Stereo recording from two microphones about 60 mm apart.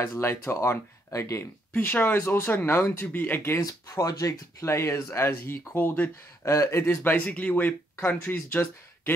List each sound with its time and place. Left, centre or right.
0.1 s speech: left
1.8 s speech: left
3.1 s speech: left
3.6 s speech: left
5.8 s speech: left
6.4 s speech: left
6.8 s speech: left
8.2 s speech: left